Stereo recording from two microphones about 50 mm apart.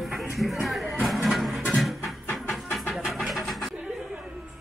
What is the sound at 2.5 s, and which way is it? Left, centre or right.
Music, centre.